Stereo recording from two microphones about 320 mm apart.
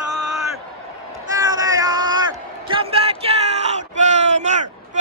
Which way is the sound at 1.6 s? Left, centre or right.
Centre.